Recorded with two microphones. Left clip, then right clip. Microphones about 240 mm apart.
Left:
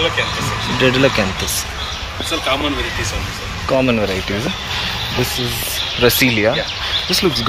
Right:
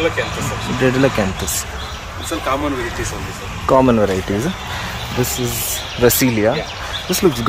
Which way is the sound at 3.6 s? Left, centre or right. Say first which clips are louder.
Right 3 dB; right.